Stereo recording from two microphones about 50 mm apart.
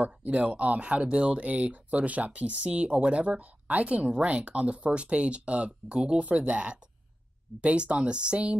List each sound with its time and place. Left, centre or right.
0.0 s speech: right